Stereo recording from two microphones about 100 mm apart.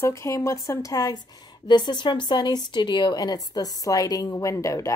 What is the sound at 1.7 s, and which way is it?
A woman's voice, 45° left (ahead or behind).